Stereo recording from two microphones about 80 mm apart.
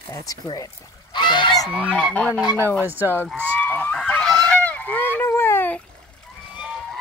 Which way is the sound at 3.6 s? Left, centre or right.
Left.